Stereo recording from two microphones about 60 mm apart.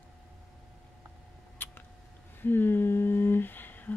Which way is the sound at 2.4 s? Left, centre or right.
Left.